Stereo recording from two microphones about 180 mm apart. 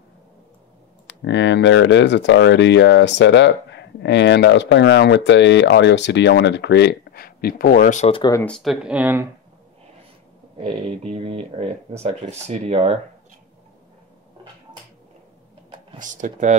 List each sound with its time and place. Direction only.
1.0 s speech: 75° left (ahead or behind); by 8.1 s 45° left (ahead or behind)
8.1 s speech: 20° left (ahead or behind)
8.5 s speech: centre (ahead or behind)
10.6 s speech: 35° right (ahead or behind)
16.0 s speech: 45° right (ahead or behind)